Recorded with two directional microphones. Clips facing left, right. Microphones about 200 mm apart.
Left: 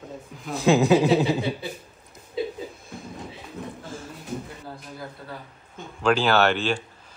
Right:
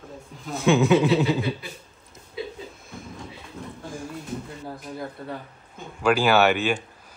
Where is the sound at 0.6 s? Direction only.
35° left (ahead or behind).